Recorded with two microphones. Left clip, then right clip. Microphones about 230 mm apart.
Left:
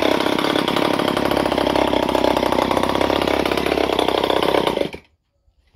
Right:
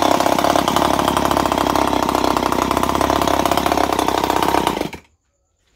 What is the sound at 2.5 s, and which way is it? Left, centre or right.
Engine, centre.